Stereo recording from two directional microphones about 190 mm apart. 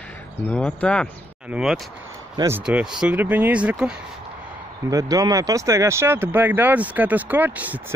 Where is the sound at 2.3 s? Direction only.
15° right (ahead or behind).